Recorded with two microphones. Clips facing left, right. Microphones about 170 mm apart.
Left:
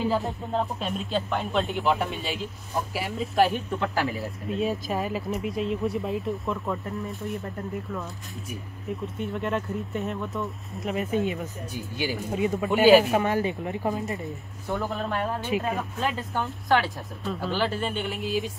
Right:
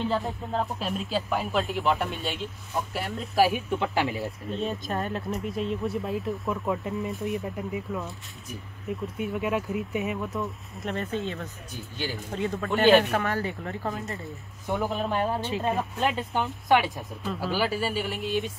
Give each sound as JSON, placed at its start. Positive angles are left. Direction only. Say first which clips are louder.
{"t": 0.0, "sound": "speech", "louder": "left 2 dB", "side_deg": 0}
{"t": 11.1, "sound": "speech", "louder": "left 5 dB", "side_deg": 15}
{"t": 13.2, "sound": "speech", "louder": "left 4 dB", "side_deg": 20}
{"t": 14.7, "sound": "speech", "louder": "right 1 dB", "side_deg": 0}
{"t": 16.6, "sound": "speech", "louder": "right 1 dB", "side_deg": -15}
{"t": 17.2, "sound": "speech", "louder": "even", "side_deg": -5}